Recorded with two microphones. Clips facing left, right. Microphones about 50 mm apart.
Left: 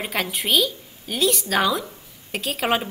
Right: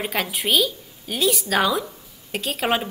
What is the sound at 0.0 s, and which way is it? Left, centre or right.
A woman's voice, centre.